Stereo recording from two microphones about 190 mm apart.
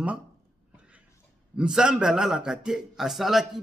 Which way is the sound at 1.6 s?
5° right (ahead or behind).